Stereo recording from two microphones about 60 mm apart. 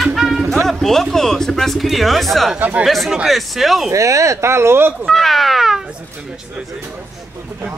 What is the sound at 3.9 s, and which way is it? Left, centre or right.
Speech, right.